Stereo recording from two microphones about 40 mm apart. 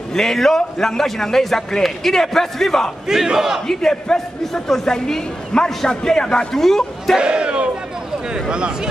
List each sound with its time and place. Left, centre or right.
0.1 s a man's voice: centre
3.1 s crowd: centre
3.6 s a man's voice: centre
7.2 s a man's voice: right